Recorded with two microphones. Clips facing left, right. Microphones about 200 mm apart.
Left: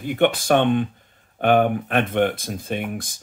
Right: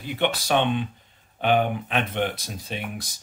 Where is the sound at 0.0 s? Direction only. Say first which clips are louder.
Left 6 dB; 50° left (ahead or behind).